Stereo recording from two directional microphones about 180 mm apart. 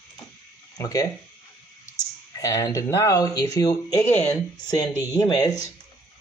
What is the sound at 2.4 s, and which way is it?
Speech, 20° left (ahead or behind).